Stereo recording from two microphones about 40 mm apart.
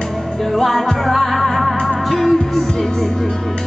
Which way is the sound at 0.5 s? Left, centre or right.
Centre.